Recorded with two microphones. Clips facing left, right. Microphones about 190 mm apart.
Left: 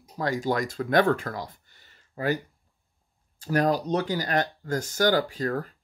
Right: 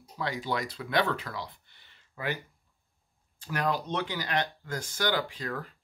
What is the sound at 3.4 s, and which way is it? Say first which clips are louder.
Speech: left 7 dB; 40° left (ahead or behind).